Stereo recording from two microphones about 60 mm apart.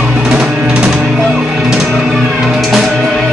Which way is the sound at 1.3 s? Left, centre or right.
Centre.